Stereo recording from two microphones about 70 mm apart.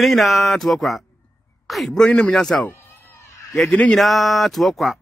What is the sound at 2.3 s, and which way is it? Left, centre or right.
Speech, centre.